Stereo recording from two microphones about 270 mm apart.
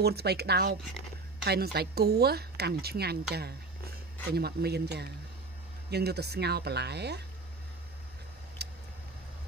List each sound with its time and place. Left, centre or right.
0.0 s a woman's voice: right
8.6 s vehicle: right